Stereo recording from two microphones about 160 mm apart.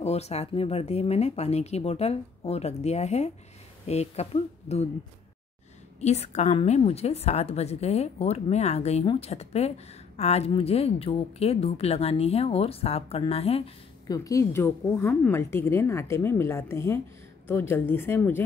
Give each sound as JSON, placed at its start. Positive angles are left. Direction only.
{"t": 0.0, "sound": "a woman's voice", "side_deg": 40}
{"t": 5.9, "sound": "a woman's voice", "side_deg": 45}
{"t": 14.0, "sound": "a woman's voice", "side_deg": 20}